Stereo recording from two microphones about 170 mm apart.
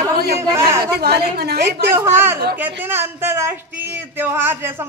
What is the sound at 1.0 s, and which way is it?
Speech, 70° right (ahead or behind).